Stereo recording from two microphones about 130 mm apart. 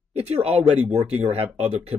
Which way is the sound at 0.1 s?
55° right (ahead or behind).